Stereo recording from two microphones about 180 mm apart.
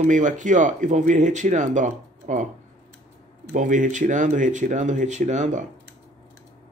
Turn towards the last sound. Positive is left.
turn(degrees=-40)  # may be behind; listen again after turning